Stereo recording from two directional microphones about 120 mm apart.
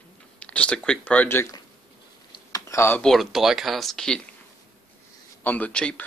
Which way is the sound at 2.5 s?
20° left (ahead or behind).